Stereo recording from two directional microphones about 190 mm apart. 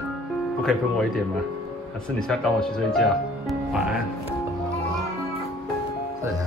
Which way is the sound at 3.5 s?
5° right (ahead or behind).